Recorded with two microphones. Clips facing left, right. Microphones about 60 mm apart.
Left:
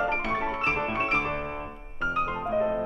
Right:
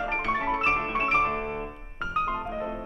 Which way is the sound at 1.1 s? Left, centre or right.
Centre.